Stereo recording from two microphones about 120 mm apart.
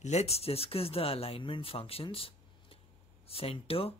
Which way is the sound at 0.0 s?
65° left (ahead or behind).